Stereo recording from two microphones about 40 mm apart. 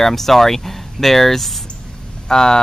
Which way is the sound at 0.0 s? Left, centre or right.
Centre.